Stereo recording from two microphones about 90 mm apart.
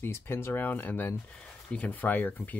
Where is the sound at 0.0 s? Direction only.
25° left (ahead or behind).